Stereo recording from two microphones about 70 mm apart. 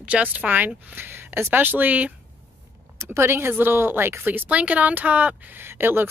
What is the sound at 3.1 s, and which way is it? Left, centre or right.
A woman's voice, right.